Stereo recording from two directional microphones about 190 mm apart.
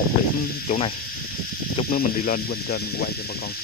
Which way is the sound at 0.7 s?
35° left (ahead or behind).